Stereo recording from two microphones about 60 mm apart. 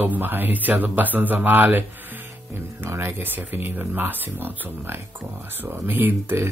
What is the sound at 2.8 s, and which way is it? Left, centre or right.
Speech, right.